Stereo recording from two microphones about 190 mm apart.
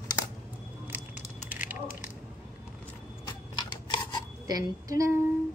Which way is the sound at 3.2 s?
20° left (ahead or behind).